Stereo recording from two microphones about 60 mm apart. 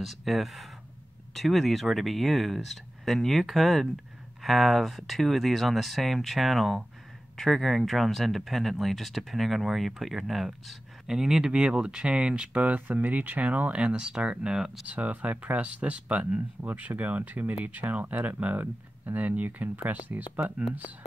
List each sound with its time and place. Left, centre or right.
0.0 s speech: centre
14.9 s speech: right